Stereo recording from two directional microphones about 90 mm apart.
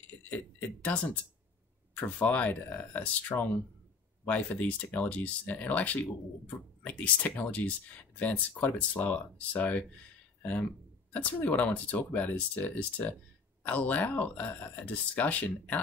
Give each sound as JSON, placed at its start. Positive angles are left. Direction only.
{"t": 0.3, "sound": "speech", "side_deg": 15}